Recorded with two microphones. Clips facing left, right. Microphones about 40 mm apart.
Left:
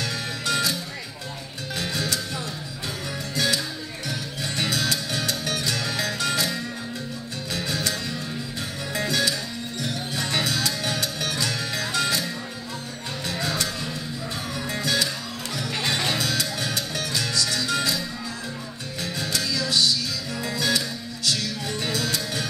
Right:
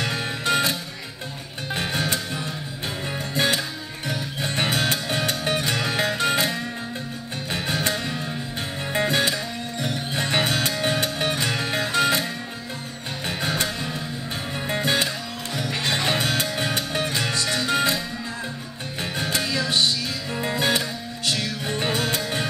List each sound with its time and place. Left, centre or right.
0.0 s music: right
1.8 s music: right
13.3 s music: right
19.1 s music: right